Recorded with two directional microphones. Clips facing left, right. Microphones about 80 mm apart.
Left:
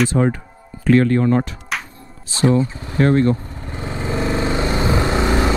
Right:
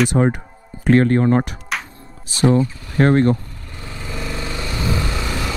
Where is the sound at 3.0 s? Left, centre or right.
Right.